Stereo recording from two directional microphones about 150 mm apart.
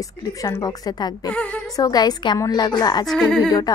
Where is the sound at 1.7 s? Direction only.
25° left (ahead or behind).